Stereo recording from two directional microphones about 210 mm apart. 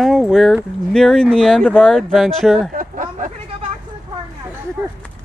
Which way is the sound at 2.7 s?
40° right (ahead or behind).